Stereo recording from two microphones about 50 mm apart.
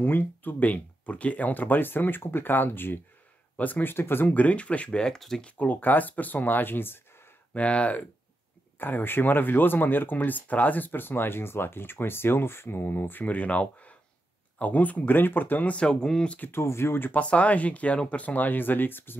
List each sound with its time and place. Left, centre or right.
0.0 s speech: left
4.3 s speech: left
5.0 s speech: centre
5.4 s speech: left
7.5 s speech: left
8.7 s speech: left
13.2 s speech: left
16.5 s speech: left
17.1 s speech: left